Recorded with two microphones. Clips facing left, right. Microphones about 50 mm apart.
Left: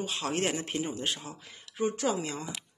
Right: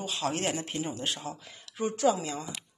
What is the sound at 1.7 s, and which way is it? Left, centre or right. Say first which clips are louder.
Speech: right 3 dB; centre.